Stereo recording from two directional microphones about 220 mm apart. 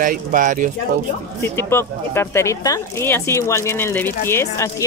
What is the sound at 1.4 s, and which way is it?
Speech, 10° left (ahead or behind).